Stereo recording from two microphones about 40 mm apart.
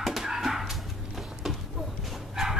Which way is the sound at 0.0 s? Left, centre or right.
Centre.